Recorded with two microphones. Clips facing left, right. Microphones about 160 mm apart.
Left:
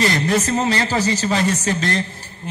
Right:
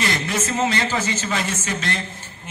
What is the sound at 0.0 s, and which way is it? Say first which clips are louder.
A man's voice: left 6 dB; 35° left (ahead or behind).